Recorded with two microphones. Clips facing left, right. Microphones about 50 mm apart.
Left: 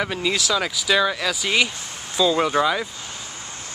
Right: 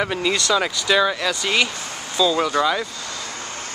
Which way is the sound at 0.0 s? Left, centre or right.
Centre.